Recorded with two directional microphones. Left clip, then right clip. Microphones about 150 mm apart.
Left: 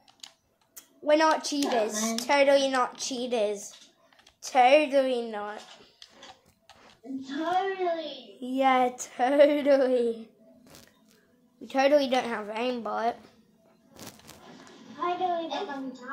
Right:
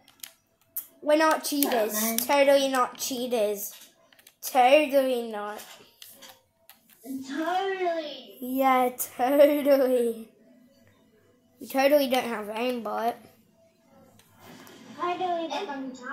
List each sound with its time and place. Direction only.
0.7 s a woman's voice: 30° right (ahead or behind)
7.3 s a child's voice: 30° right (ahead or behind)
11.6 s a child's voice: 30° right (ahead or behind)
14.4 s a sound: 25° right (ahead or behind)
15.0 s a child's voice: 25° right (ahead or behind)